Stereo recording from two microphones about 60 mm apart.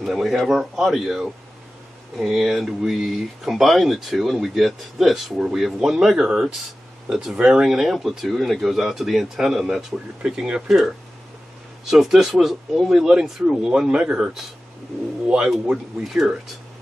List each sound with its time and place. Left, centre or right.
0.0 s speech: centre
11.8 s speech: centre
13.1 s speech: centre
15.2 s speech: centre